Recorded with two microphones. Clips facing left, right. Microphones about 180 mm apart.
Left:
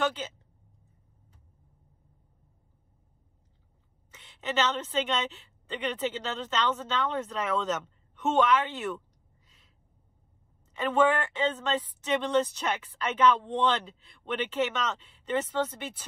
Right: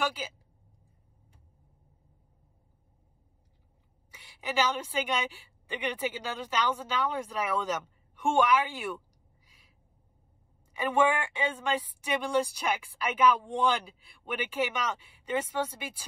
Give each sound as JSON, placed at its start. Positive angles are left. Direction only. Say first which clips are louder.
{"t": 0.0, "sound": "speech", "louder": "left 3 dB", "side_deg": -10}
{"t": 4.1, "sound": "a woman's voice", "louder": "left 2 dB", "side_deg": -10}
{"t": 10.7, "sound": "a woman's voice", "louder": "left 2 dB", "side_deg": -10}